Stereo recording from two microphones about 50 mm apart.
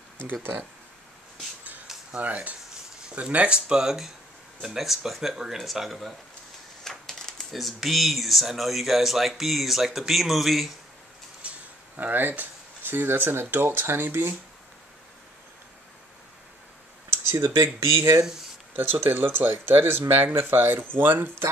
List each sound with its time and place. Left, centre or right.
0.3 s speech: right
2.1 s speech: right; by 6.1 s centre
6.8 s speech: centre
11.4 s a sound: right
12.0 s speech: right
17.1 s a sound: right
17.7 s speech: right
18.8 s speech: right